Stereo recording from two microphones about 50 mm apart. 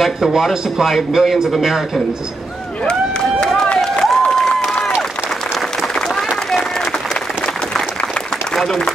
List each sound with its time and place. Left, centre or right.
0.0 s speech: centre
2.8 s run: centre
3.8 s applause: centre
5.9 s applause: centre
7.4 s applause: centre
8.5 s a man's voice: centre